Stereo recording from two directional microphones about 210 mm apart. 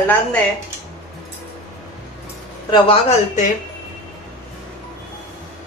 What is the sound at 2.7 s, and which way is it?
Speech, 25° left (ahead or behind).